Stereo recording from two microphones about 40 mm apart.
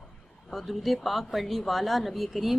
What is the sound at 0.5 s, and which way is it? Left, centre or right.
A woman's voice, centre.